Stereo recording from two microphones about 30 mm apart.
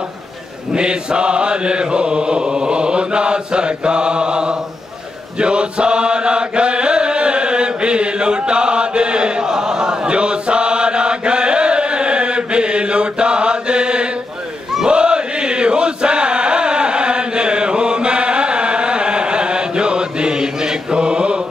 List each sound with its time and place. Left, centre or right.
0.7 s mantra: right
5.4 s chant: right